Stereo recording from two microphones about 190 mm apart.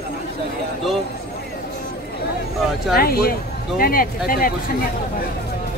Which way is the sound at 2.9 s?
55° left (ahead or behind).